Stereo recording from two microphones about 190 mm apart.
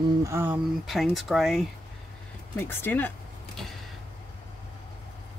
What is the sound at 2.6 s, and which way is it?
Speech, 10° left (ahead or behind).